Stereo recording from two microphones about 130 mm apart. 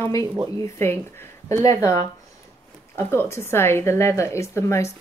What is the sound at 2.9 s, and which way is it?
Speech, 20° left (ahead or behind).